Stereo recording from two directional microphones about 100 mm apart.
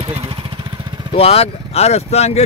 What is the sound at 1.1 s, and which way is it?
Speech, 85° left.